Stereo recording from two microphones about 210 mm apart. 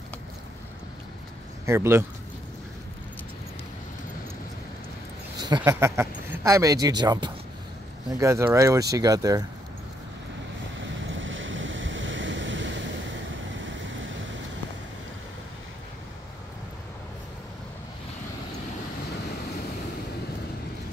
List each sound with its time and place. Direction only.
1.7 s speech: 10° right (ahead or behind)
5.6 s speech: 15° right (ahead or behind)
10.8 s waves: 65° right (ahead or behind)